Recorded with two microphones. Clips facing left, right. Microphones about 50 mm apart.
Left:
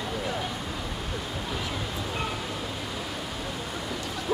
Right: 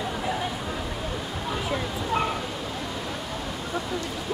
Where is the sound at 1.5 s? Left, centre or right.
Centre.